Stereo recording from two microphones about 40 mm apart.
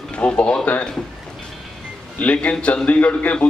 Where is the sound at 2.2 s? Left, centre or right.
Left.